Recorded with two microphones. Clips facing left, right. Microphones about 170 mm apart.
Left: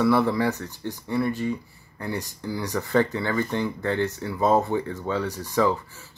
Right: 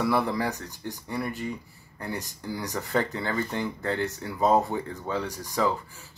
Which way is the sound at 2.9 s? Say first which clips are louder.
Left 5 dB; 40° right (ahead or behind).